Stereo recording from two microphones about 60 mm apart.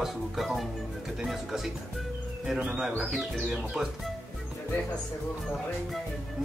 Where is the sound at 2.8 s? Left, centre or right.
Centre.